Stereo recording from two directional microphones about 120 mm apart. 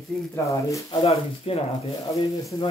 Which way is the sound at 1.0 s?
55° left (ahead or behind).